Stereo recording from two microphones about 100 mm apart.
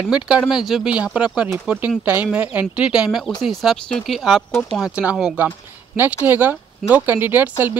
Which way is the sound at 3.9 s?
5° left (ahead or behind).